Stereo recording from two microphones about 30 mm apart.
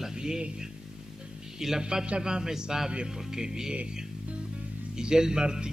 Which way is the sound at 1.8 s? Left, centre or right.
Right.